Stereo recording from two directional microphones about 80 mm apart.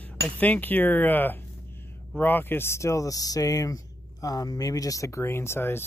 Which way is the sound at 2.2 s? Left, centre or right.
Left.